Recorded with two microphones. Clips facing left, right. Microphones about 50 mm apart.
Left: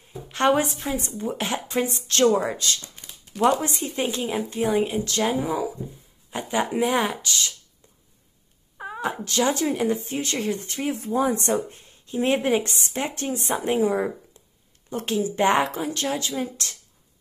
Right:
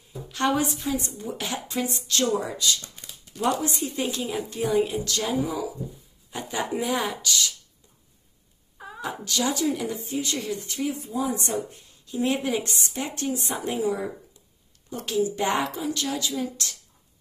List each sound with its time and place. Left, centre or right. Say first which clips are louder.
0.3 s speech: left 4 dB; left
3.4 s speech: left 4 dB; left
8.7 s speech: left 5 dB; left
11.0 s speech: left 5 dB; left